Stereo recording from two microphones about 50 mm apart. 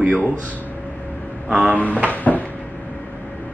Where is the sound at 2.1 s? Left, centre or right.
Left.